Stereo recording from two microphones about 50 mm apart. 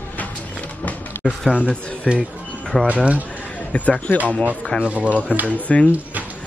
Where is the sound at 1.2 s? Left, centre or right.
Left.